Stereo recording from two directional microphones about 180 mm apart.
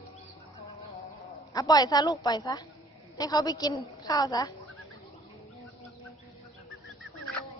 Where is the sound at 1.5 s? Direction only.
20° left (ahead or behind).